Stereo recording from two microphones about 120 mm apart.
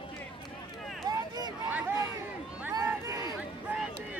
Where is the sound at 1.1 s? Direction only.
35° right (ahead or behind).